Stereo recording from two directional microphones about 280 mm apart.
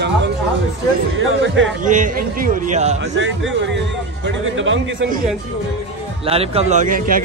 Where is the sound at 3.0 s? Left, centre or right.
Right.